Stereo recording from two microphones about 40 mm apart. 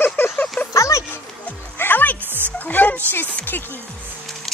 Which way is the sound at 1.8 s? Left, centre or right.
Left.